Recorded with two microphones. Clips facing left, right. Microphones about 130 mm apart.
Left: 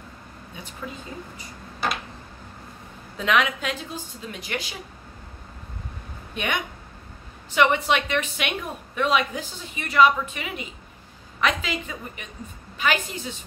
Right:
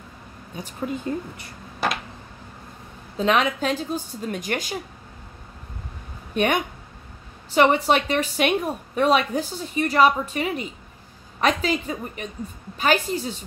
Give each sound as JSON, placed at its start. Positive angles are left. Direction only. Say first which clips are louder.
{"t": 0.6, "sound": "a woman's voice", "louder": "right 7 dB", "side_deg": -40}
{"t": 1.3, "sound": "speech", "louder": "even", "side_deg": -60}
{"t": 3.2, "sound": "a woman's voice", "louder": "right 2 dB", "side_deg": -35}
{"t": 6.3, "sound": "a woman's voice", "louder": "right 7 dB", "side_deg": -40}